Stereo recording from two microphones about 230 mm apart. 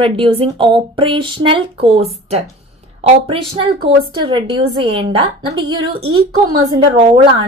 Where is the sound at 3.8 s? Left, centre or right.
Right.